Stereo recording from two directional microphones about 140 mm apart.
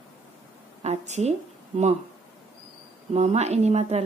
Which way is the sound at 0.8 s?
55° right (ahead or behind).